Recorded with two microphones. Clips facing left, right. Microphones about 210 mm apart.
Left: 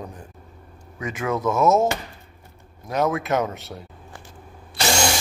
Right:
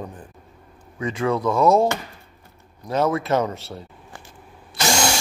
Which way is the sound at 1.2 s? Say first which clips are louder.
Right 2 dB; 5° left (ahead or behind).